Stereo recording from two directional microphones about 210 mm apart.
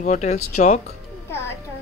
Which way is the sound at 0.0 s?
35° left (ahead or behind).